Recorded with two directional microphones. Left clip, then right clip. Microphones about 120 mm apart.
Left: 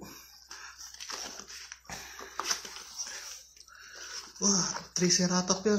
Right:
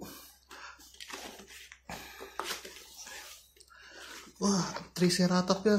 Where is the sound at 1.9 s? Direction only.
Centre (ahead or behind).